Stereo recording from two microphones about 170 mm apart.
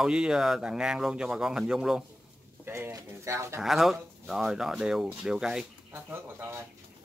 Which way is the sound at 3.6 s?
Centre (ahead or behind).